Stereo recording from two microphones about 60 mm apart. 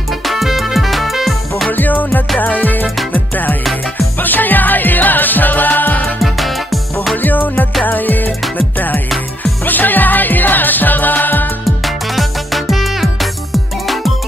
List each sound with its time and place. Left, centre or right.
0.3 s music: centre
1.7 s music: left
4.2 s music: left
6.2 s music: centre
7.2 s music: left
11.8 s music: centre